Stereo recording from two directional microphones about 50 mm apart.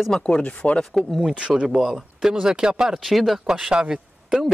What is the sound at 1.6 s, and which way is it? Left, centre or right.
Speech, centre.